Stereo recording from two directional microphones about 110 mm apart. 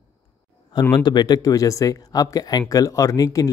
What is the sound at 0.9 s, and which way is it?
Speech, 40° left (ahead or behind).